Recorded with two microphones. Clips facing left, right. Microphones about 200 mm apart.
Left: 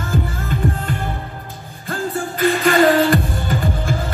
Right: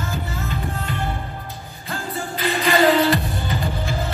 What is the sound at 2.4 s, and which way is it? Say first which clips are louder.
Music: left 4 dB; 50° left (ahead or behind).